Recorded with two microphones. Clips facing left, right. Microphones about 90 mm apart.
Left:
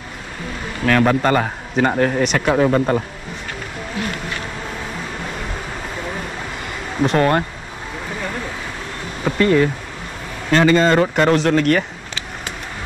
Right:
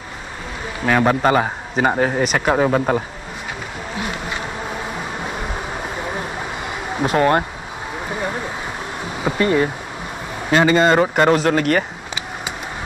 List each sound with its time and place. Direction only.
0.8 s speech: 10° right (ahead or behind)
4.0 s bee: 15° right (ahead or behind)
5.2 s vehicle: 15° right (ahead or behind)
6.6 s a sound: 5° right (ahead or behind)
8.1 s a sound: 20° right (ahead or behind)
9.2 s speech: 15° right (ahead or behind)